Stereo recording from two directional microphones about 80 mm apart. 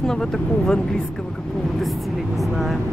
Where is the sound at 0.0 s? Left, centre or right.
Centre.